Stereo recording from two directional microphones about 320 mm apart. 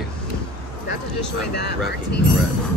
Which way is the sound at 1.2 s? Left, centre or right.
Left.